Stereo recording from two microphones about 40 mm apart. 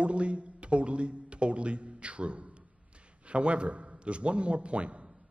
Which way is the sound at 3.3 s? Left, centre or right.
Right.